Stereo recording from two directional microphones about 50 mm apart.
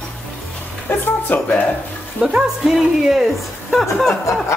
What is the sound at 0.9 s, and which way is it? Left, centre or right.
Music, left.